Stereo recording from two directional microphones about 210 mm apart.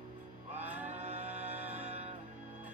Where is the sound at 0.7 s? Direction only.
35° right (ahead or behind).